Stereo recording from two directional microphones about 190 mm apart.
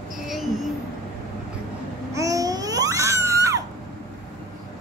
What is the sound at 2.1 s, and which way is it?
Babbling, 15° right (ahead or behind).